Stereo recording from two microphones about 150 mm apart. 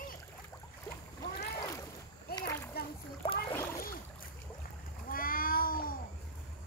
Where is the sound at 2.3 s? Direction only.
90° left.